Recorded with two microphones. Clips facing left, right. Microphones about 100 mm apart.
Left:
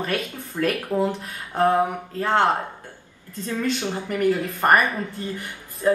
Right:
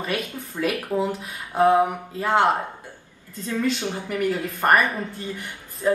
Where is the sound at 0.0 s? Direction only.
5° right (ahead or behind).